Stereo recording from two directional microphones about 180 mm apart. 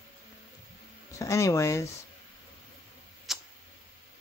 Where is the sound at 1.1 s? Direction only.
15° left (ahead or behind).